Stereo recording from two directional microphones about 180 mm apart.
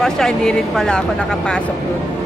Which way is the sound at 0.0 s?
5° left (ahead or behind).